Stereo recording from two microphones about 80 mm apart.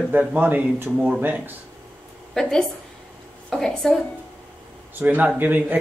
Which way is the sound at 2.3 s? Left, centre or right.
Centre.